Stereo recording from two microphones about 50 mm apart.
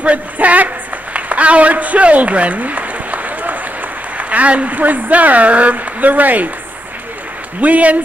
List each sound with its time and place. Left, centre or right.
0.0 s speech: right
1.1 s a sound: right
4.2 s a woman's voice: right
7.6 s a woman's voice: right